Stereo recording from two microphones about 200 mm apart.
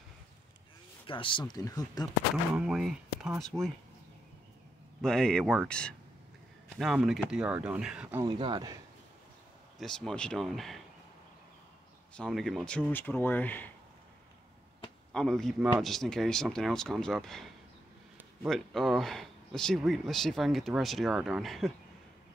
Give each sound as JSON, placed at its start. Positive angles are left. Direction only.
{"t": 1.0, "sound": "a man's voice", "side_deg": 25}
{"t": 2.5, "sound": "speech", "side_deg": -5}
{"t": 5.0, "sound": "speech", "side_deg": 5}
{"t": 8.2, "sound": "speech", "side_deg": -25}
{"t": 9.8, "sound": "speech", "side_deg": 5}
{"t": 12.2, "sound": "speech", "side_deg": 0}
{"t": 15.1, "sound": "speech", "side_deg": 0}